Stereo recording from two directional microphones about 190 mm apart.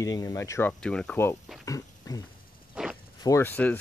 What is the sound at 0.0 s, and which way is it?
Speech, 15° left (ahead or behind).